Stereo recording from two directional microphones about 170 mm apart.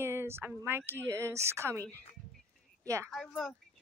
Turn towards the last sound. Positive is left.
turn(degrees=0)  # may be behind; listen again after turning